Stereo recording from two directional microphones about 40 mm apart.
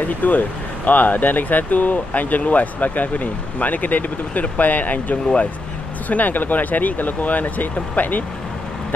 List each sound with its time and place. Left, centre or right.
0.0 s speech: left
5.1 s speech: left
6.0 s speech: left